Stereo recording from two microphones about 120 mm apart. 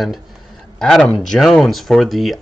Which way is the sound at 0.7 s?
5° left (ahead or behind).